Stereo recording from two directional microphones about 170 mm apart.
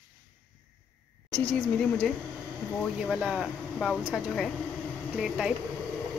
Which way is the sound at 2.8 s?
5° right (ahead or behind).